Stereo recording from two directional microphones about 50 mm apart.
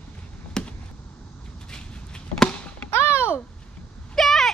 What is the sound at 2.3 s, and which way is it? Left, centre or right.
Chop, left.